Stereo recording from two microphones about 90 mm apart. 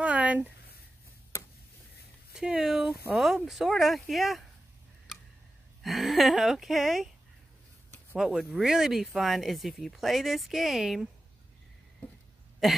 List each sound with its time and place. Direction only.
0.0 s a sound: 15° right (ahead or behind)
2.3 s speech: 10° right (ahead or behind)
5.8 s speech: centre (ahead or behind)
8.2 s speech: 5° right (ahead or behind)